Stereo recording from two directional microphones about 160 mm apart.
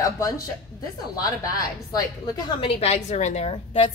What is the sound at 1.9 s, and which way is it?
Speech, 25° left (ahead or behind).